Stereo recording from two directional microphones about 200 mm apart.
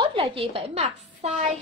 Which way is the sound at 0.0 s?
25° right (ahead or behind).